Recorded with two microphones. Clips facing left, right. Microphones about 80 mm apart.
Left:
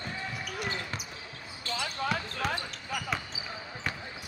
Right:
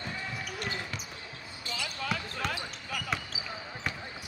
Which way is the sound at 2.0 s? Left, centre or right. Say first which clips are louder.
Left 3 dB; left.